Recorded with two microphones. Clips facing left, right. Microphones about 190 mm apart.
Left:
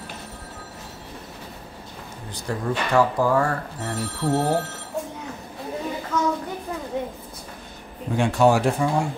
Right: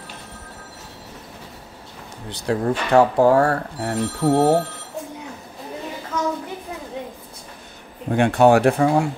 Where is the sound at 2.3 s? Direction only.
70° right (ahead or behind).